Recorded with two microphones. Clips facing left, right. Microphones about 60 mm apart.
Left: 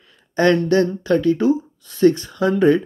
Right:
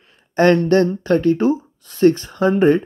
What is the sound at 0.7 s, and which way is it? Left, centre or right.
Speech, right.